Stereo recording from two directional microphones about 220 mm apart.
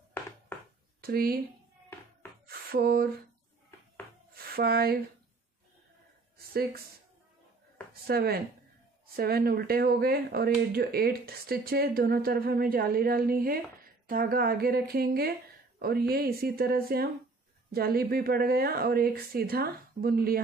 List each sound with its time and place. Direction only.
0.5 s a sound: 10° left (ahead or behind)
1.0 s speech: 45° right (ahead or behind)
2.4 s a sound: 45° right (ahead or behind)
4.4 s speech: 45° right (ahead or behind)
6.5 s speech: 45° right (ahead or behind)
7.9 s speech: 45° right (ahead or behind)